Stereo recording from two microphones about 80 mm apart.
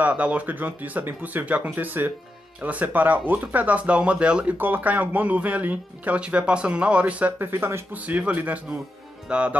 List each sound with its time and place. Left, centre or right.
0.0 s speech: centre
4.6 s speech: right
7.3 s speech: right
7.9 s speech: centre
9.3 s music: centre